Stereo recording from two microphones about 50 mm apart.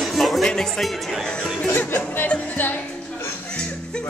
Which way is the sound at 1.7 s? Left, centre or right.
Left.